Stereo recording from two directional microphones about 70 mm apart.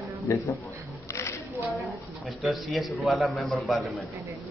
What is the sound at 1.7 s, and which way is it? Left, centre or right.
A man's voice, centre.